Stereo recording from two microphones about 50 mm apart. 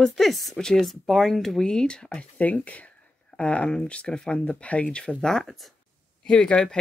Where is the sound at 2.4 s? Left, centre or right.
Left.